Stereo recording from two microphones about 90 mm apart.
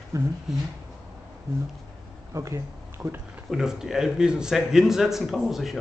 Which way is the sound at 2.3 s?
35° right (ahead or behind).